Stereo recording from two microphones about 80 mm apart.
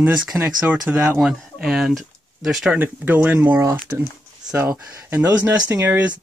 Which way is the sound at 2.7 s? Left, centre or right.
Right.